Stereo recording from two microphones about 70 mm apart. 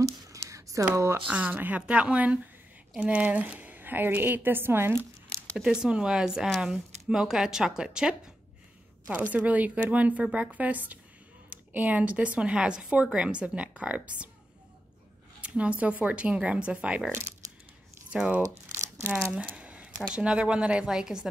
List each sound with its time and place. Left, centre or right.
0.0 s a sound: right
1.3 s a woman's voice: right
5.6 s speech: centre
9.3 s a woman's voice: right
15.4 s speech: centre
18.1 s speech: centre
18.4 s crumpling: right
19.3 s a sound: centre
20.1 s speech: centre